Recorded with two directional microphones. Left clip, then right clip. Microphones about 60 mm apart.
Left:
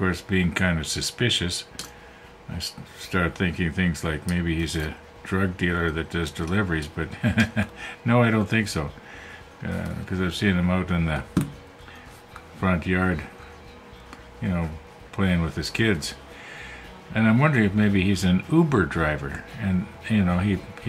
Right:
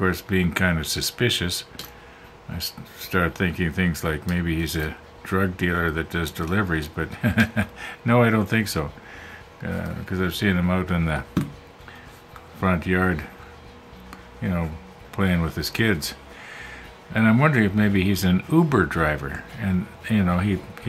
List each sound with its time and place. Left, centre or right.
0.0 s speech: right
12.5 s speech: right
14.4 s speech: right